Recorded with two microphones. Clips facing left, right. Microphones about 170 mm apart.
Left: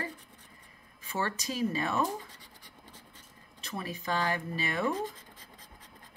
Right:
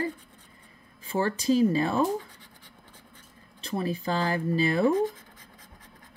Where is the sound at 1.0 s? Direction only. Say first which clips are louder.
Right 9 dB; 30° right (ahead or behind).